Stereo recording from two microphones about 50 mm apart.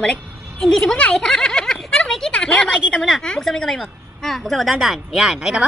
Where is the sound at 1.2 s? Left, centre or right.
Centre.